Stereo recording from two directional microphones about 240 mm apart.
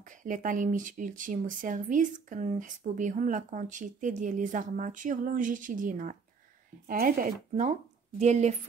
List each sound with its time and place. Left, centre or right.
0.0 s speech: right